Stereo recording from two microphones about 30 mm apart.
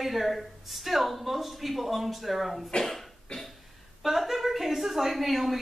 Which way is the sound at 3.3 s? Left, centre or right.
Left.